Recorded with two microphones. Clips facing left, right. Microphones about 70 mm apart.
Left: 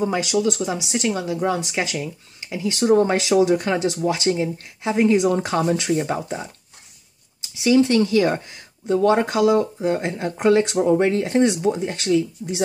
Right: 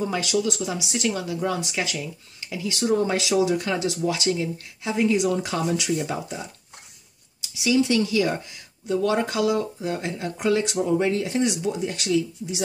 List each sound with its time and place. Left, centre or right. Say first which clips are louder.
0.0 s speech: left 4 dB; left
7.6 s speech: left 5 dB; left